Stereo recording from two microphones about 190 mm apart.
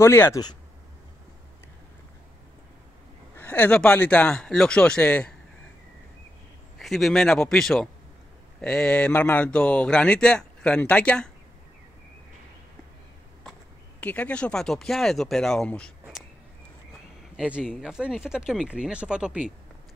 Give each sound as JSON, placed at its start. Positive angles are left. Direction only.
{"t": 0.0, "sound": "speech", "side_deg": 15}
{"t": 3.3, "sound": "speech", "side_deg": 10}
{"t": 6.8, "sound": "speech", "side_deg": 0}
{"t": 14.0, "sound": "speech", "side_deg": 5}
{"t": 17.4, "sound": "speech", "side_deg": -5}